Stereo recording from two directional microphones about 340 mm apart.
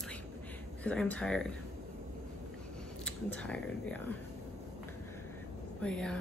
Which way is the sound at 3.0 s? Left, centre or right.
Centre.